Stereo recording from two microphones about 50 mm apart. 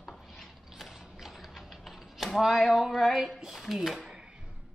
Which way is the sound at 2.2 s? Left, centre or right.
Centre.